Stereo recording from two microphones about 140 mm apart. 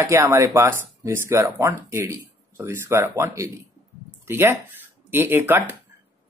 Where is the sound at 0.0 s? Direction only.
20° right (ahead or behind).